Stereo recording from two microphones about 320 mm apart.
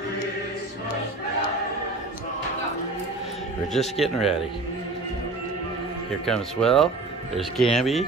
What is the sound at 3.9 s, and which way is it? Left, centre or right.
Speech, centre.